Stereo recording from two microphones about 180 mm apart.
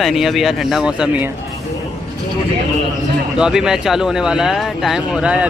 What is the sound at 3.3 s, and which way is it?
Speech, 5° right (ahead or behind).